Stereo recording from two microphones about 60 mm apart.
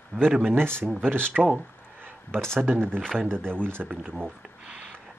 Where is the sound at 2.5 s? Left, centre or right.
Right.